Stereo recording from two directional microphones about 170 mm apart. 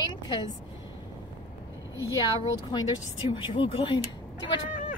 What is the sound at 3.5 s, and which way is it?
Speech, 30° left (ahead or behind).